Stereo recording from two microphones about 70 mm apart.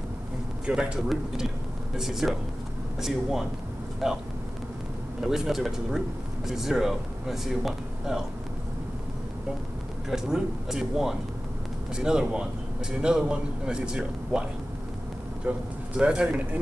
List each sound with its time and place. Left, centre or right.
0.7 s a man's voice: centre
5.2 s speech: centre
10.0 s a man's voice: centre
15.5 s a man's voice: right